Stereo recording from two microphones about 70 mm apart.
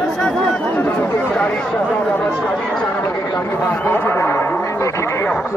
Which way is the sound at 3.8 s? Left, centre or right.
Left.